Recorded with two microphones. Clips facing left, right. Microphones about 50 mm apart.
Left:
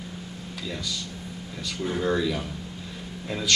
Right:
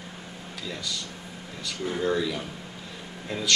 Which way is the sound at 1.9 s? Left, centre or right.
Centre.